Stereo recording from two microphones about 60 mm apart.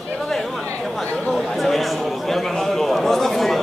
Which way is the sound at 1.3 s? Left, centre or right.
Centre.